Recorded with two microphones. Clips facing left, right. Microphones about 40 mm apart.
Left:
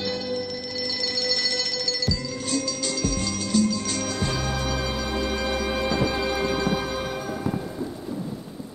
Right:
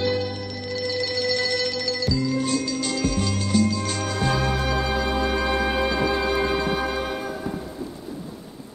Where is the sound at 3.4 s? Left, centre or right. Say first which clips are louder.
Even; centre.